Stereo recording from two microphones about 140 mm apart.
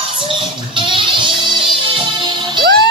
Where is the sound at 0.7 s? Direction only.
35° right (ahead or behind).